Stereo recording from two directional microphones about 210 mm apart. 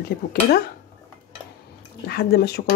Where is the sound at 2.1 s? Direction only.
50° left (ahead or behind).